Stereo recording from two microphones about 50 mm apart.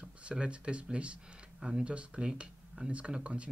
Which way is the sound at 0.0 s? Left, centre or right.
Right.